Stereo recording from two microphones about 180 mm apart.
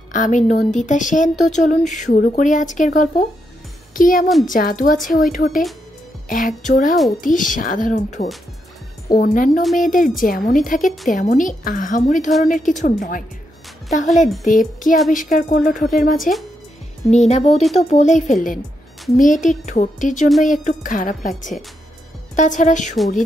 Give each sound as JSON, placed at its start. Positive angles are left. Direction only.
{"t": 0.1, "sound": "speech", "side_deg": 45}
{"t": 9.1, "sound": "speech", "side_deg": 50}
{"t": 17.1, "sound": "speech", "side_deg": 40}